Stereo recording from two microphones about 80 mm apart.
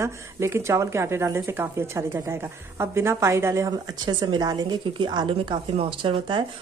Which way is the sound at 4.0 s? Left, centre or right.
Right.